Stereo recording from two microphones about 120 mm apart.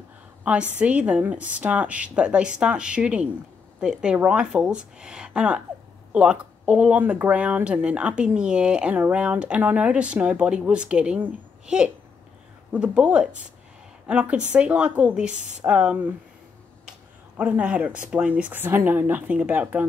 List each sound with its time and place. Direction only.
0.4 s speech: 10° right (ahead or behind)
15.3 s speech: 90° right
15.6 s speech: 10° right (ahead or behind)
17.4 s speech: 10° right (ahead or behind)